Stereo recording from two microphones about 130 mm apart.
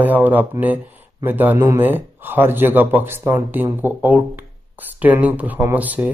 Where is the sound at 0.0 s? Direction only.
15° right (ahead or behind).